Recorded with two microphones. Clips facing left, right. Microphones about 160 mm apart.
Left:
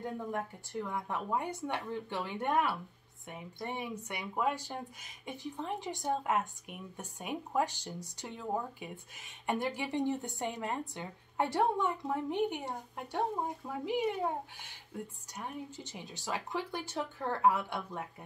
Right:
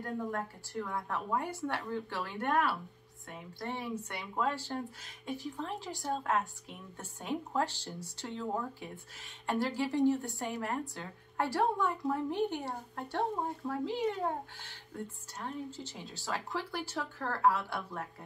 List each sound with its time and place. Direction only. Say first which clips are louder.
0.0 s a woman's voice: right 1 dB; 20° left (ahead or behind)